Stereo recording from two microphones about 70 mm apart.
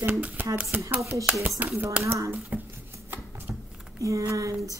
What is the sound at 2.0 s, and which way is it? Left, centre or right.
Speech, right.